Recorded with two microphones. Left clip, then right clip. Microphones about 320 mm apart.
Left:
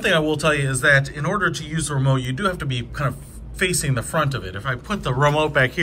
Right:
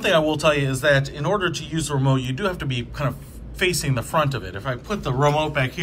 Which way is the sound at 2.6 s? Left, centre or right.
Left.